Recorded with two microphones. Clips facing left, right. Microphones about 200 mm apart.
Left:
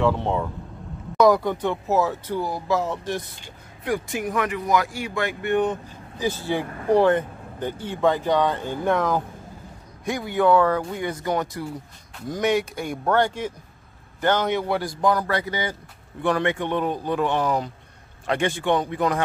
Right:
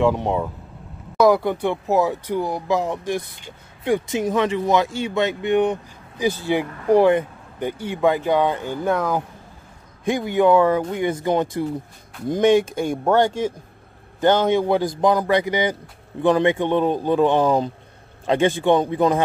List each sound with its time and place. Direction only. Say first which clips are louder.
0.0 s speech: right 3 dB; 15° right (ahead or behind)
10.0 s a man's voice: right 3 dB; 20° right (ahead or behind)
14.4 s a man's voice: right 6 dB; 20° right (ahead or behind)